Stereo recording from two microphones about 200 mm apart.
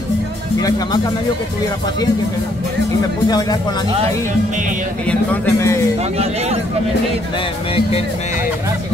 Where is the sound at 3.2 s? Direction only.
20° left (ahead or behind).